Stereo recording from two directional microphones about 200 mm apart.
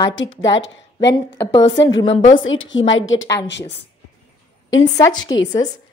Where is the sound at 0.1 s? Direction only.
70° left (ahead or behind).